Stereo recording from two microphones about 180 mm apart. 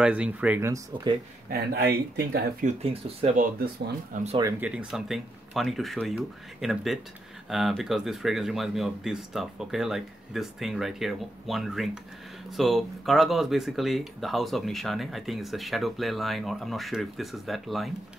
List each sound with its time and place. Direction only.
0.0 s speech: 5° right (ahead or behind)
1.5 s speech: 60° right (ahead or behind)
2.6 s speech: 35° right (ahead or behind)
4.4 s speech: 15° right (ahead or behind)
4.6 s speech: 5° right (ahead or behind)